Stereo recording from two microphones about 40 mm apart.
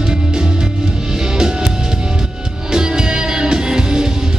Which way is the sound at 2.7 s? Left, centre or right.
Centre.